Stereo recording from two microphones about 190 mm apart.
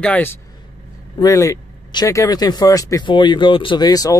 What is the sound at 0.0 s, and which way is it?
Speech, 10° left (ahead or behind).